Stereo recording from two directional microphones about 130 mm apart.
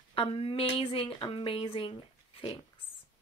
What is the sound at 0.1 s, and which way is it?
Speech, 45° left (ahead or behind).